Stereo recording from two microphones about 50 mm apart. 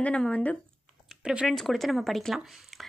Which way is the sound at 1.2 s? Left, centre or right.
Centre.